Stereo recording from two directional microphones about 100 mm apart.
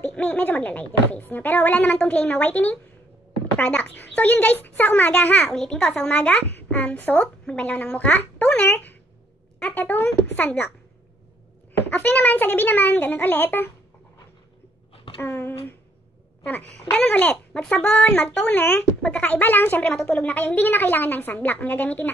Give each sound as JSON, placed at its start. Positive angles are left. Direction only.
{"t": 0.0, "sound": "speech", "side_deg": 15}
{"t": 11.9, "sound": "speech", "side_deg": 15}
{"t": 15.2, "sound": "a sound", "side_deg": 25}
{"t": 16.9, "sound": "speech", "side_deg": 10}